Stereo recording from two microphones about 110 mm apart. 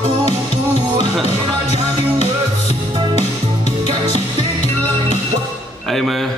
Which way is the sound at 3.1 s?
75° left (ahead or behind).